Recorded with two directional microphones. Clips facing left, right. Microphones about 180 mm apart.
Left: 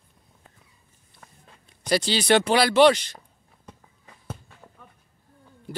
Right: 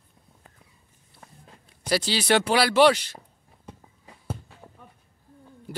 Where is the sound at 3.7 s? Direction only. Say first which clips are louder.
Right 3 dB; 10° right (ahead or behind).